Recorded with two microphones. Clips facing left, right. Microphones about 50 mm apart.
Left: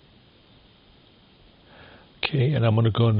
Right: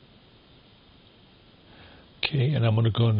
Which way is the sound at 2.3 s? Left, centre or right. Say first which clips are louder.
Left 3 dB; centre.